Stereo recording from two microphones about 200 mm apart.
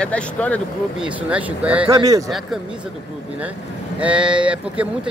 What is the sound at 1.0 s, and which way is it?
Speech, 5° right (ahead or behind).